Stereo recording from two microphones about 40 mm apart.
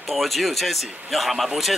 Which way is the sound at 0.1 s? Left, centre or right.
Centre.